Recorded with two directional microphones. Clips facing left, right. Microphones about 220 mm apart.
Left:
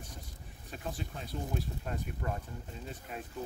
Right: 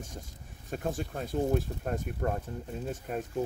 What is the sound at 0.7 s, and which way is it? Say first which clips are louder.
Speech: right 7 dB; 50° right (ahead or behind).